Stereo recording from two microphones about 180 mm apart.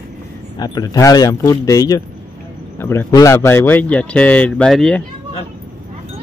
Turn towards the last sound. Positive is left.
turn(degrees=5)  # may be behind; listen again after turning